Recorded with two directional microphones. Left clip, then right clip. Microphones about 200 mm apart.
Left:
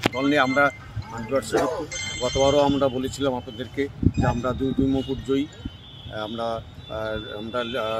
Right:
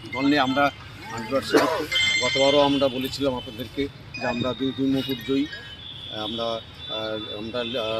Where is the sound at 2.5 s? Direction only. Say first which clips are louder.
Even; 30° left (ahead or behind).